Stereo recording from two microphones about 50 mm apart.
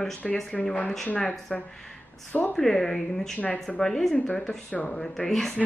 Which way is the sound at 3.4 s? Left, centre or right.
Left.